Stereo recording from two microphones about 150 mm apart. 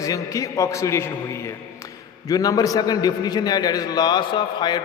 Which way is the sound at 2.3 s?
25° left (ahead or behind).